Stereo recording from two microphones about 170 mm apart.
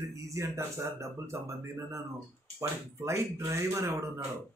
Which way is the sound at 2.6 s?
15° right (ahead or behind).